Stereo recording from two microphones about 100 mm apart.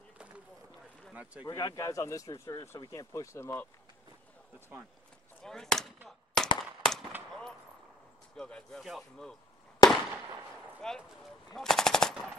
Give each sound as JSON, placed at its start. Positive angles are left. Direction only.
{"t": 1.1, "sound": "speech", "side_deg": -15}
{"t": 1.5, "sound": "speech", "side_deg": 35}
{"t": 5.4, "sound": "speech", "side_deg": 5}
{"t": 6.0, "sound": "gunshot", "side_deg": 5}
{"t": 6.6, "sound": "firecracker", "side_deg": 5}
{"t": 8.4, "sound": "speech", "side_deg": 10}
{"t": 9.8, "sound": "fireworks", "side_deg": 45}
{"t": 10.8, "sound": "speech", "side_deg": 5}
{"t": 11.5, "sound": "machine gun", "side_deg": 5}